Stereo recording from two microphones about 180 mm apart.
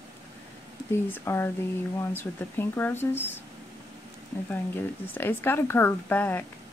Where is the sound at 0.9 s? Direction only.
15° left (ahead or behind).